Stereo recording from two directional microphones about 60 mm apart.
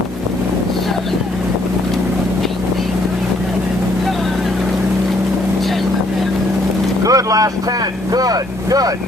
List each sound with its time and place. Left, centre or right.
7.1 s vehicle: right
8.1 s speech: right